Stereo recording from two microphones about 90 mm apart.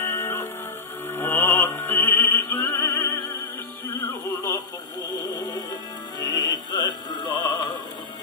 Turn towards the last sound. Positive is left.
turn(degrees=55)  # may be behind; listen again after turning